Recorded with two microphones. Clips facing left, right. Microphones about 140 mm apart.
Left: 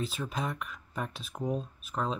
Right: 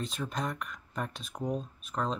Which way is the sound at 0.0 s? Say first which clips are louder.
Left 1 dB; 5° left (ahead or behind).